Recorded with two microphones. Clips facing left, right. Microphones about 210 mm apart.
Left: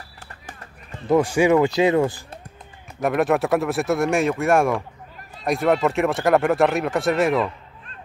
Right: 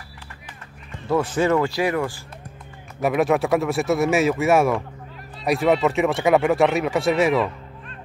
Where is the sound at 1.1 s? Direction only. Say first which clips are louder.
Left 3 dB; 15° left (ahead or behind).